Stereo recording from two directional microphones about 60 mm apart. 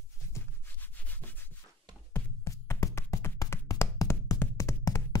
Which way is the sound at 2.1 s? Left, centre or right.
Left.